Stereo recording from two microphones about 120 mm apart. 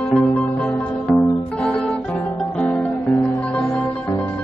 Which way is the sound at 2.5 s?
10° left (ahead or behind).